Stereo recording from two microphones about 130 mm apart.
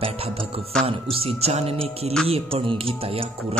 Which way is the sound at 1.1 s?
50° right (ahead or behind).